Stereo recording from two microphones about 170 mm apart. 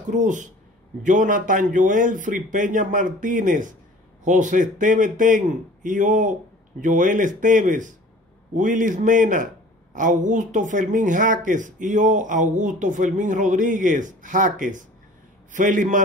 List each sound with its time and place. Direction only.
0.1 s speech: 50° right (ahead or behind)